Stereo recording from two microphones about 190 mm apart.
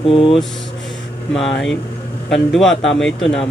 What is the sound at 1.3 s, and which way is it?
Speech, centre (ahead or behind).